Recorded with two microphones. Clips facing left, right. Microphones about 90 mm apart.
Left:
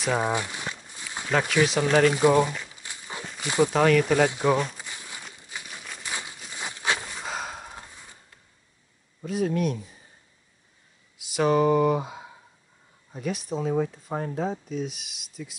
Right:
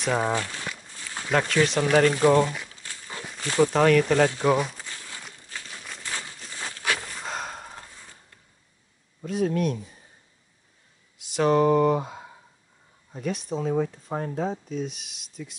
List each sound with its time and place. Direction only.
0.0 s speech: centre (ahead or behind)
0.3 s a sound: 15° left (ahead or behind)
1.2 s speech: 5° left (ahead or behind)
2.7 s walk: 15° left (ahead or behind)
3.3 s speech: 15° left (ahead or behind)
3.7 s speech: centre (ahead or behind)
4.5 s speech: centre (ahead or behind)
4.7 s crumpling: 15° left (ahead or behind)
5.5 s a sound: 15° left (ahead or behind)
7.1 s gasp: 5° left (ahead or behind)
9.2 s speech: centre (ahead or behind)
11.1 s speech: 5° left (ahead or behind)